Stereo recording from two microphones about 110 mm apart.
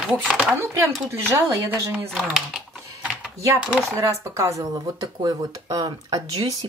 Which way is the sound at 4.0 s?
25° right (ahead or behind).